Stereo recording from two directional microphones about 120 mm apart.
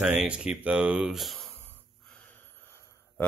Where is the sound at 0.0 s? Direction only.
5° right (ahead or behind).